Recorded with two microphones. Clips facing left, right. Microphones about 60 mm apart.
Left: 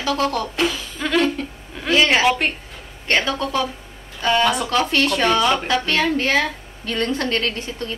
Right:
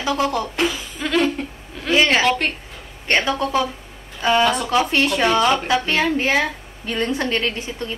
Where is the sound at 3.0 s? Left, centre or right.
Centre.